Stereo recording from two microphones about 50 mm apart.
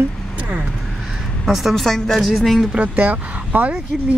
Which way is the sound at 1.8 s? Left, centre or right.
Centre.